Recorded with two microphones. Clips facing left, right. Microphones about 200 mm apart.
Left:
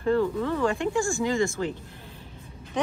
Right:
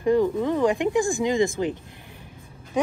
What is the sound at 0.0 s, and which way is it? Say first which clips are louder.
A woman's voice: right 3 dB; 15° right (ahead or behind).